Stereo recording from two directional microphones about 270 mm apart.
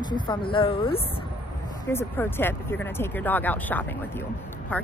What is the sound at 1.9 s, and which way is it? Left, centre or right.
Speech, centre.